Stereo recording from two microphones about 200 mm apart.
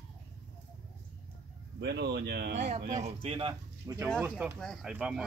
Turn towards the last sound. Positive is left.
turn(degrees=-5)  # may be behind; listen again after turning